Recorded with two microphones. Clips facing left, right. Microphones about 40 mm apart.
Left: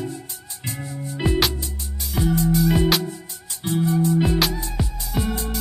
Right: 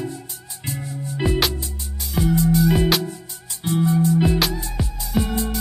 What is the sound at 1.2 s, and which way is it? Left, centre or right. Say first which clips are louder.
Music: even; centre.